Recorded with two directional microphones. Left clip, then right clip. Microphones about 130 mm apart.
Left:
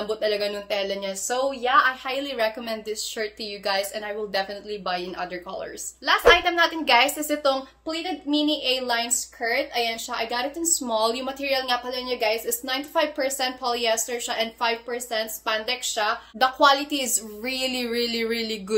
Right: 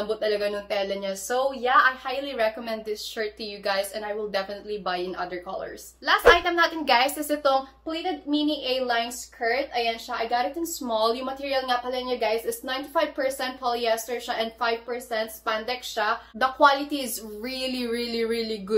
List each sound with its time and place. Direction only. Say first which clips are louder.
0.1 s speech: left 1 dB; 35° left (ahead or behind)
2.0 s a woman's voice: left 1 dB; 35° left (ahead or behind)
8.3 s a woman's voice: left 4 dB; 35° left (ahead or behind)